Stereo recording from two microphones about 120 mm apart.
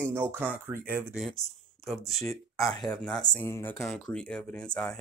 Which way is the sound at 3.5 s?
20° left (ahead or behind).